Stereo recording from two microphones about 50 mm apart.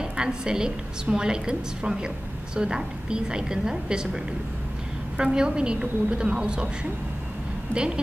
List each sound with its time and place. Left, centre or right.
0.0 s a woman's voice: centre